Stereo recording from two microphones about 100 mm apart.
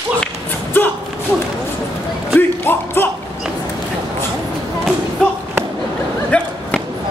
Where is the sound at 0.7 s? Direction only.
20° left (ahead or behind).